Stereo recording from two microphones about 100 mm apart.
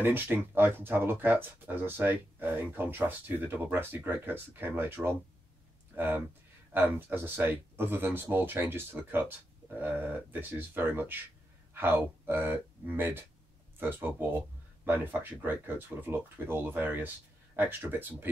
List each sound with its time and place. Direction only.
0.0 s speech: 20° right (ahead or behind)